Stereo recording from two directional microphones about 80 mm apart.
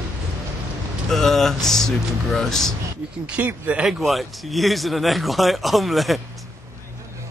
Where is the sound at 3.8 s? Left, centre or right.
Centre.